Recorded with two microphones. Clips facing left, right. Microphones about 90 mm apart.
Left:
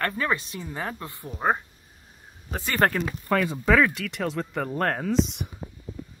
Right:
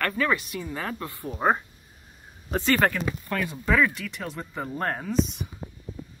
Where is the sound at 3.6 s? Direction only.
80° left.